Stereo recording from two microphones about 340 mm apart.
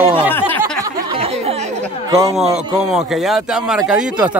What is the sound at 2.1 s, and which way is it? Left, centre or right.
Speech, centre.